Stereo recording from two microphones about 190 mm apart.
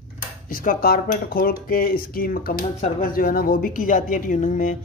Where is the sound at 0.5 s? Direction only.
50° left (ahead or behind).